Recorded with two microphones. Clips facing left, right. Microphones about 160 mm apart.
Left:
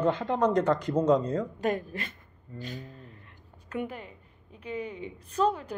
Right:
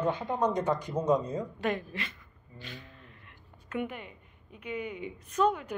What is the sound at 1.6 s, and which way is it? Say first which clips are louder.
A woman's voice: left 3 dB; 45° left (ahead or behind).